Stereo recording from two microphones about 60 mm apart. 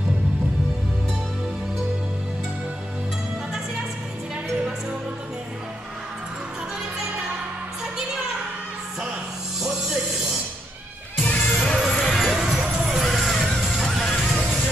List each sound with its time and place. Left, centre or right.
11.2 s music: centre
11.5 s music: centre
12.4 s music: centre
13.6 s vehicle: centre
14.2 s music: centre